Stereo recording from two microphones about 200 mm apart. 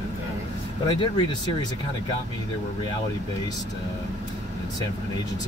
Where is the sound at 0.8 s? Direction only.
20° left (ahead or behind).